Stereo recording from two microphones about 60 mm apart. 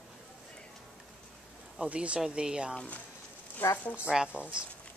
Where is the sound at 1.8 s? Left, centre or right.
Centre.